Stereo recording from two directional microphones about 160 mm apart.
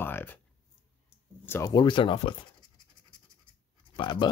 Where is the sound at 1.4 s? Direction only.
15° left (ahead or behind).